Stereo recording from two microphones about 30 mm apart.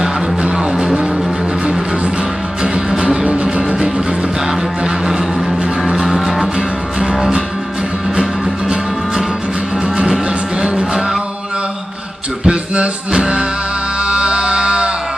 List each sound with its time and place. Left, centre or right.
0.4 s music: right
3.0 s music: right
3.5 s music: right
4.5 s music: centre
7.0 s music: centre
10.6 s music: right
12.4 s music: right